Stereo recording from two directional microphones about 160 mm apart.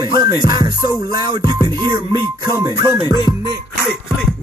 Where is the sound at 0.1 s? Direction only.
25° right (ahead or behind).